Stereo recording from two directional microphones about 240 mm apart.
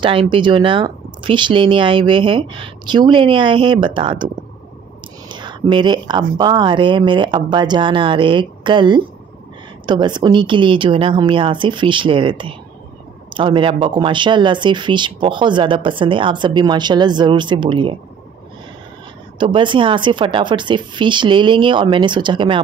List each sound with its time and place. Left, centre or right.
0.0 s speech: right
5.3 s speech: centre
19.3 s speech: right